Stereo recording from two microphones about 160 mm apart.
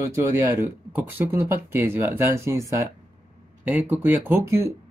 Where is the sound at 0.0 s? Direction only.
20° right (ahead or behind).